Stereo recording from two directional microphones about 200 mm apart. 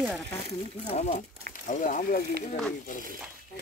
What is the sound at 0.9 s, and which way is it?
Speech, 35° left (ahead or behind).